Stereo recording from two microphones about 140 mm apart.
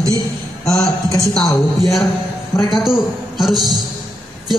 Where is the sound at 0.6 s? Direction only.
25° left (ahead or behind).